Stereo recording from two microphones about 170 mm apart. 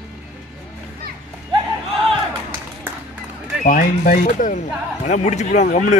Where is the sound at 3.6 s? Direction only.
50° left (ahead or behind).